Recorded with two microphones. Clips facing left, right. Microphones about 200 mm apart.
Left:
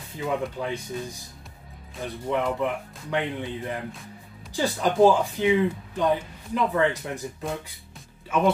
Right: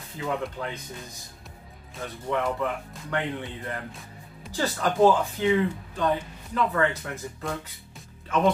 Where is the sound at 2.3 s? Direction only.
20° left (ahead or behind).